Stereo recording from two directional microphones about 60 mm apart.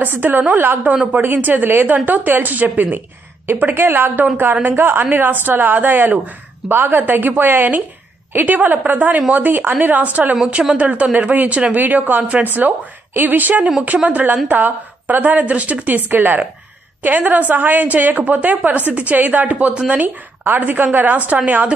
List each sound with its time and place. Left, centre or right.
0.0 s a woman's voice: right
20.0 s speech: right